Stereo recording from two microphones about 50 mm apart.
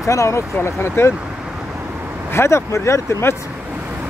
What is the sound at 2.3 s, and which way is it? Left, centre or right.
Speech, left.